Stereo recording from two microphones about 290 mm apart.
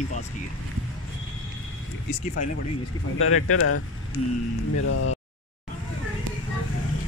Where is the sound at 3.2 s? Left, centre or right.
Left.